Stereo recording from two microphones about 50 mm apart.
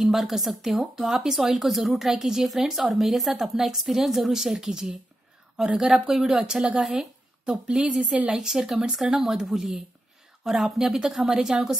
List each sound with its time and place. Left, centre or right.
0.0 s a woman's voice: centre
8.0 s a woman's voice: right
8.3 s speech: centre